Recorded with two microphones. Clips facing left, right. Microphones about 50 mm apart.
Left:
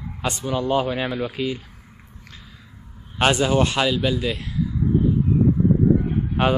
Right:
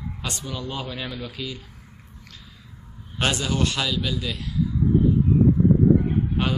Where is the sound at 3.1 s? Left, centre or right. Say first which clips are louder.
Left 6 dB; left.